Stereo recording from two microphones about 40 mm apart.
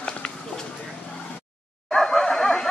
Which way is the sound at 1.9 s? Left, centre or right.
Centre.